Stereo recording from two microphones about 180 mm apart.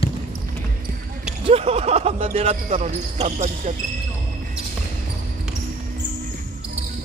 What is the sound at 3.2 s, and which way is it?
Speech, 40° right (ahead or behind).